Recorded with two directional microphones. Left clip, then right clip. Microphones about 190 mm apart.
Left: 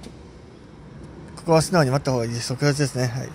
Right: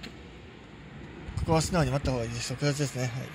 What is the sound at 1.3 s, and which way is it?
Speech, 25° left (ahead or behind).